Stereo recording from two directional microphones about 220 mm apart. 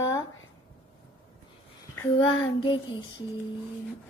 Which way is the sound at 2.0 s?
20° left (ahead or behind).